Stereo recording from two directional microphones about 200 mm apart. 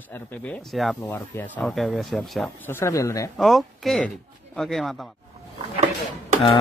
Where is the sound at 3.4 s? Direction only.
Centre (ahead or behind).